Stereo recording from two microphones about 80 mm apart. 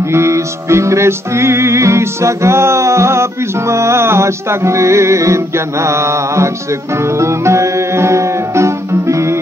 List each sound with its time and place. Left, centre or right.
0.1 s music: right